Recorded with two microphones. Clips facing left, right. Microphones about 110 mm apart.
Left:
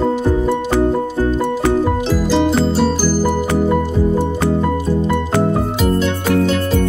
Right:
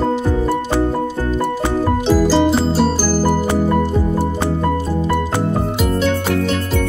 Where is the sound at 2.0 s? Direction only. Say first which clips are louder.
Right 2 dB; centre (ahead or behind).